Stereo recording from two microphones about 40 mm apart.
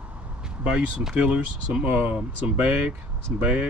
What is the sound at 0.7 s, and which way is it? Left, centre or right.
Speech, right.